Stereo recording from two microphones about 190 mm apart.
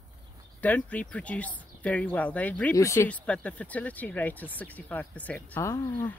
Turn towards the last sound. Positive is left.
turn(degrees=15)  # may be behind; listen again after turning